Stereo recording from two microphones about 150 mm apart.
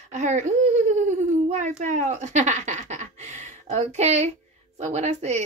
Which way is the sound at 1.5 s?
50° right (ahead or behind).